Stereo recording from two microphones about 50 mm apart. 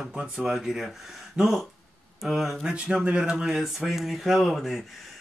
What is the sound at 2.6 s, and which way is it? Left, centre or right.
Speech, centre.